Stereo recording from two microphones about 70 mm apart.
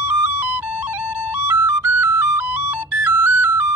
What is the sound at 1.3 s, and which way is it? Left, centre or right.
Flute, right.